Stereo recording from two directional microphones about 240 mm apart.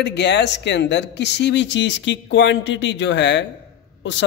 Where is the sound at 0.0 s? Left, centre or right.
Left.